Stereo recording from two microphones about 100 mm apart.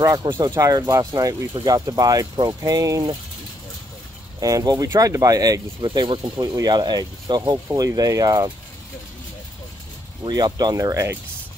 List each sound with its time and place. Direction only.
0.4 s speech: 35° right (ahead or behind)
4.4 s speech: 40° right (ahead or behind)
5.9 s speech: 55° right (ahead or behind)
6.3 s speech: 40° right (ahead or behind)
10.2 s speech: 45° right (ahead or behind)